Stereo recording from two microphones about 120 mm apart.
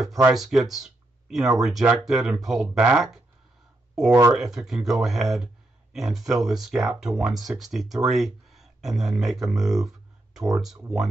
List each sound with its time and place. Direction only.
0.3 s speech: 5° right (ahead or behind)